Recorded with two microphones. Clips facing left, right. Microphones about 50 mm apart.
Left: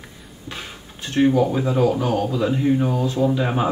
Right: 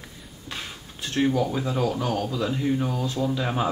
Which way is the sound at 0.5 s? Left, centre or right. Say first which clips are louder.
Left 2 dB; centre.